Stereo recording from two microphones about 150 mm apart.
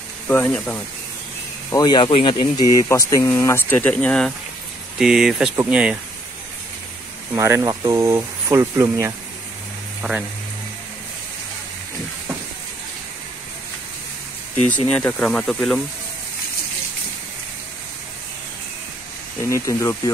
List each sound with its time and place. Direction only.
0.3 s speech: 10° left (ahead or behind)
1.7 s speech: 30° left (ahead or behind); by 5.9 s 5° right (ahead or behind)
7.3 s speech: 20° right (ahead or behind)
14.9 s speech: 10° left (ahead or behind)
19.4 s speech: 20° left (ahead or behind)